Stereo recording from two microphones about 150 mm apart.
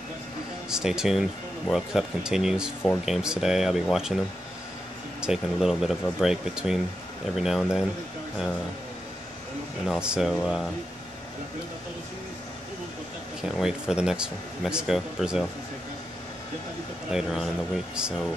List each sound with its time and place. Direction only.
0.7 s speech: 5° right (ahead or behind)
5.2 s speech: 5° right (ahead or behind)
9.8 s speech: 5° right (ahead or behind)
13.4 s speech: 5° right (ahead or behind)
17.1 s speech: centre (ahead or behind)